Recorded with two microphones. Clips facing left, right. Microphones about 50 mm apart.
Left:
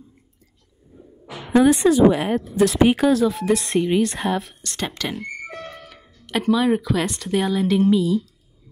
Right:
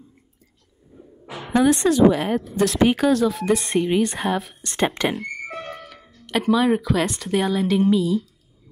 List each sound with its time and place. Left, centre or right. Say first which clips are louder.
1.5 s speech: left 2 dB; centre
4.7 s speech: right 6 dB; right
5.1 s speech: right 2 dB; centre